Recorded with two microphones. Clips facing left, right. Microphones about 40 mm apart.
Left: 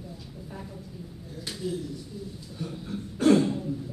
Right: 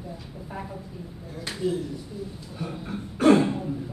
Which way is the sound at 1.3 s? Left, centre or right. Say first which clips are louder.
Right 5 dB; centre.